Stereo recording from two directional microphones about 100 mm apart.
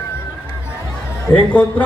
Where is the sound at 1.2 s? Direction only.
15° left (ahead or behind).